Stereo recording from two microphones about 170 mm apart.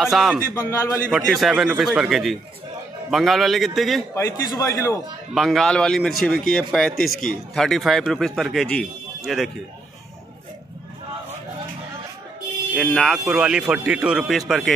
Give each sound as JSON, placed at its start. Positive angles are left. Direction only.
{"t": 0.0, "sound": "speech", "side_deg": 0}
{"t": 0.6, "sound": "a man's voice", "side_deg": 15}
{"t": 1.1, "sound": "speech", "side_deg": 0}
{"t": 4.1, "sound": "a man's voice", "side_deg": 20}
{"t": 5.3, "sound": "speech", "side_deg": 0}
{"t": 12.7, "sound": "speech", "side_deg": 5}